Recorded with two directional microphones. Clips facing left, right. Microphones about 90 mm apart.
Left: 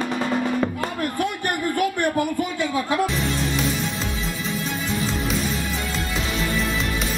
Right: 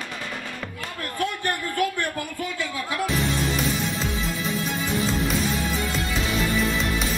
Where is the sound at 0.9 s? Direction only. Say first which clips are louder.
Left 1 dB; 15° left (ahead or behind).